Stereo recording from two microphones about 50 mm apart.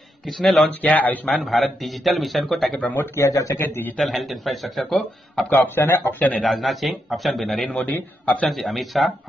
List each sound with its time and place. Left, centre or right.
0.3 s a man's voice: centre
0.8 s a man's voice: left
1.4 s a man's voice: centre
3.0 s speech: left
3.6 s speech: left
4.0 s a man's voice: centre
5.8 s speech: left
6.1 s a man's voice: left
6.4 s a man's voice: centre
7.7 s a man's voice: left
8.5 s a man's voice: centre